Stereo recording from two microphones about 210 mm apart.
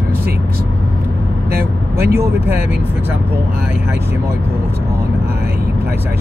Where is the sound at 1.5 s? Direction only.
45° right (ahead or behind).